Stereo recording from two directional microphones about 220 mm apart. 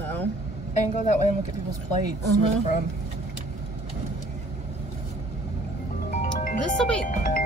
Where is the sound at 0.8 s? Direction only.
30° left (ahead or behind).